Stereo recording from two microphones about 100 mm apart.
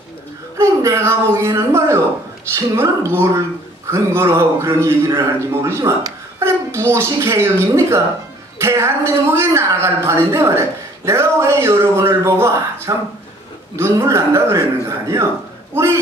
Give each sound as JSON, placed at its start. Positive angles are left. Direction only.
{"t": 0.6, "sound": "a man's voice", "side_deg": -25}